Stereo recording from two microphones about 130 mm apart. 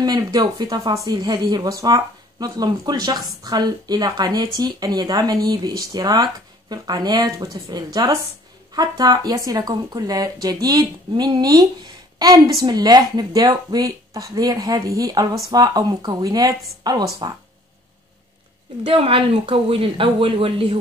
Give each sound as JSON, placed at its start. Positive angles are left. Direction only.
{"t": 0.0, "sound": "speech", "side_deg": -30}
{"t": 18.9, "sound": "speech", "side_deg": -40}